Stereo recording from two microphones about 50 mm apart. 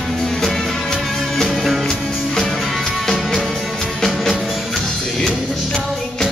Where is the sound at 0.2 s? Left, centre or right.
Centre.